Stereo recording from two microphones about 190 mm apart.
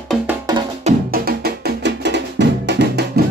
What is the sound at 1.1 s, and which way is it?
Music, 55° right (ahead or behind).